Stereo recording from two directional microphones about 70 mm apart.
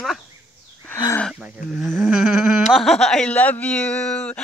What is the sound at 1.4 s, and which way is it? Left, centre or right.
Speech, centre.